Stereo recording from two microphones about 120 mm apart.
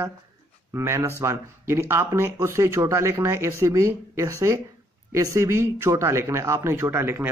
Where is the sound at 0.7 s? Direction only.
20° right (ahead or behind).